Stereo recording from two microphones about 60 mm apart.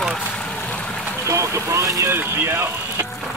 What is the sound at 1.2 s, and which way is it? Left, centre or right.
Speech, right.